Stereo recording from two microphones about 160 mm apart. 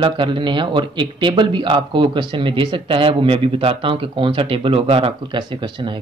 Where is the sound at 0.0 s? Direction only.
30° right (ahead or behind).